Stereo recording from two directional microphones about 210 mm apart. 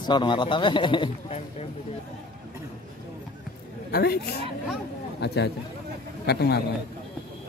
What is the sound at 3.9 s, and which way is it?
A man's voice, 50° left (ahead or behind).